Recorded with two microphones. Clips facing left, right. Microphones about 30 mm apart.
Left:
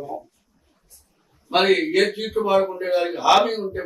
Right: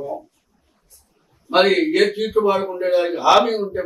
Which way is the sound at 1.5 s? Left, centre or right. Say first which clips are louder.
Right 3 dB; centre.